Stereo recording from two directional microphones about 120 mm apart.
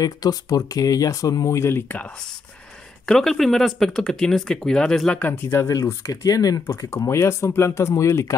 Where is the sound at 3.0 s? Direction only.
5° left (ahead or behind).